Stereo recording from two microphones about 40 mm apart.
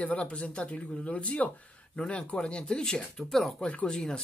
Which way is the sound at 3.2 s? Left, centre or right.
Centre.